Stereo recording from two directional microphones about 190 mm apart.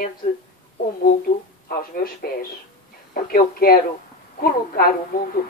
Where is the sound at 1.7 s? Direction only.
50° left (ahead or behind).